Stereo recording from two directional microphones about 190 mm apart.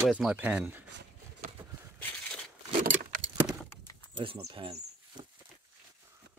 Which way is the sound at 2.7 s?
45° right (ahead or behind).